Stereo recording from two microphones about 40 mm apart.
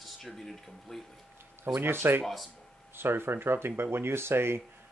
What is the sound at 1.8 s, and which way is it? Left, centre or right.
Speech, right.